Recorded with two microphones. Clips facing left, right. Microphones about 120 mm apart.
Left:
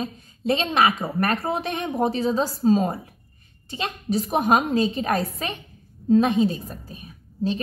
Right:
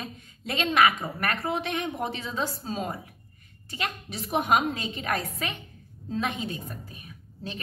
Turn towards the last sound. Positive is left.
turn(degrees=30)  # may be behind; listen again after turning